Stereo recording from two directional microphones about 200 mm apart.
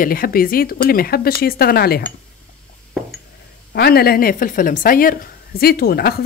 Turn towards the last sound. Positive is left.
turn(degrees=50)  # may be behind; listen again after turning